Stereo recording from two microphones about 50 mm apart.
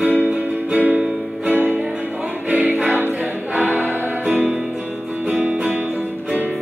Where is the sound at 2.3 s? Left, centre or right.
Right.